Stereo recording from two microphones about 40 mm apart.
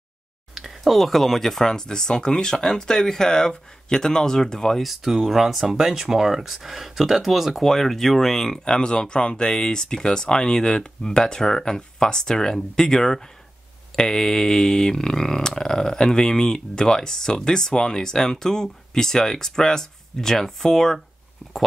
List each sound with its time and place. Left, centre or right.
0.6 s speech: centre
4.8 s speech: centre
7.7 s speech: centre